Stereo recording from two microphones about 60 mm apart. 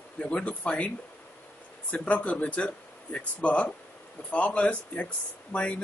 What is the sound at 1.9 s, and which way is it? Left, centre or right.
Speech, left.